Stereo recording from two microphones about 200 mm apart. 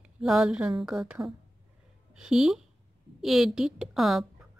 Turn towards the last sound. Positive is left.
turn(degrees=0)  # may be behind; listen again after turning